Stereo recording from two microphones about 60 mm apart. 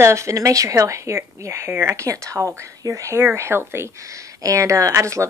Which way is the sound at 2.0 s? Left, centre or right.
Right.